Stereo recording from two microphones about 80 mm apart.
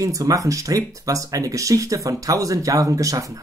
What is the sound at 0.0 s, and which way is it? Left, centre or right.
Speech, right.